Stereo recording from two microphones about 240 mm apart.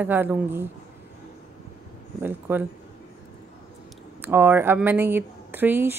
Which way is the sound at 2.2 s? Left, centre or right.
Centre.